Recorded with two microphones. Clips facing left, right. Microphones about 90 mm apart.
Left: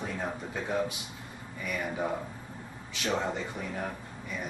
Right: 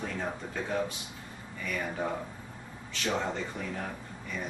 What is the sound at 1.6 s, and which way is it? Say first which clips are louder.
Speech: left 1 dB; 10° left (ahead or behind).